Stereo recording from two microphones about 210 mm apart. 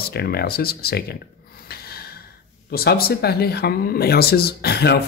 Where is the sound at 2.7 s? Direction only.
45° left (ahead or behind).